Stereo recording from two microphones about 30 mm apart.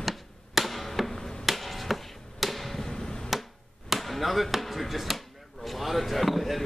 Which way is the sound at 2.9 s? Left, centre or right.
Left.